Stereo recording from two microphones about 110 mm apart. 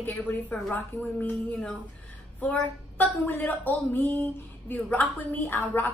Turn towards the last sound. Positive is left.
turn(degrees=20)  # may be behind; listen again after turning